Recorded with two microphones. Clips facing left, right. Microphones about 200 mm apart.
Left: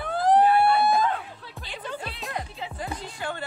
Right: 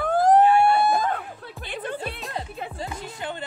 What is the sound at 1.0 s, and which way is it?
Music, 50° right (ahead or behind).